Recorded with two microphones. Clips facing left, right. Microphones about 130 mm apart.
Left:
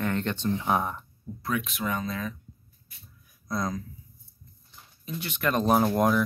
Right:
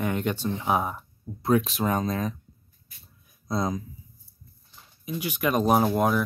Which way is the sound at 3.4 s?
25° right (ahead or behind).